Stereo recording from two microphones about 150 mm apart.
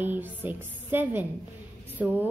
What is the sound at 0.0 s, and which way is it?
Speech, 10° right (ahead or behind).